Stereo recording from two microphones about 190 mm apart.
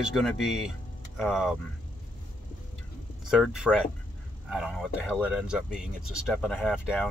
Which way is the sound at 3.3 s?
5° right (ahead or behind).